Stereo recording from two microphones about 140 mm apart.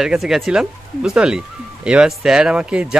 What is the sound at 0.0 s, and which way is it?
Speech, 5° right (ahead or behind).